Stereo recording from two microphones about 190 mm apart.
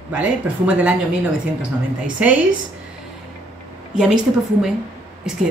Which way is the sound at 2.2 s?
5° right (ahead or behind).